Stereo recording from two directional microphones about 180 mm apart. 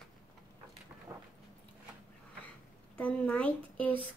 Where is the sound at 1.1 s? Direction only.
20° right (ahead or behind).